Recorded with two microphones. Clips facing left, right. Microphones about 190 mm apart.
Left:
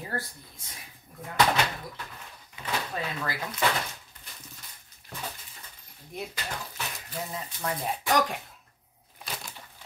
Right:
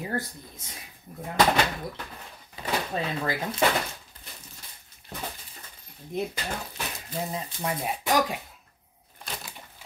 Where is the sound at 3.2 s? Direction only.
20° right (ahead or behind).